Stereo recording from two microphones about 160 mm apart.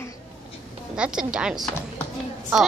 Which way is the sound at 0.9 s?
5° right (ahead or behind).